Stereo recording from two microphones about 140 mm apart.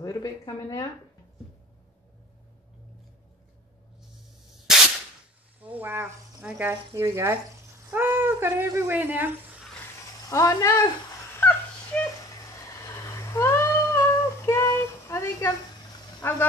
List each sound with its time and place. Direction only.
0.0 s speech: 25° left (ahead or behind)
5.6 s speech: 10° right (ahead or behind)
10.3 s speech: 25° left (ahead or behind)
11.3 s wail: 10° left (ahead or behind)
12.8 s a sound: 20° left (ahead or behind)